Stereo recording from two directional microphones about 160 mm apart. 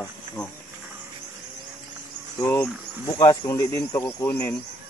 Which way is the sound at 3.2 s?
20° left (ahead or behind).